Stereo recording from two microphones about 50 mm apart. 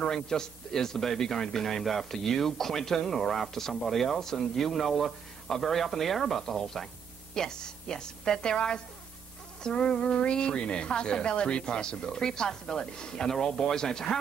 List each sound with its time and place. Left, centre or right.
0.0 s a man's voice: centre